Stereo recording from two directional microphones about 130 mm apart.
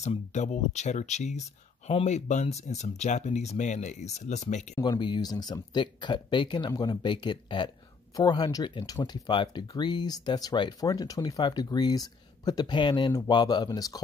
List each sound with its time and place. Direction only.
0.0 s speech: 60° left (ahead or behind)
4.7 s speech: 35° left (ahead or behind)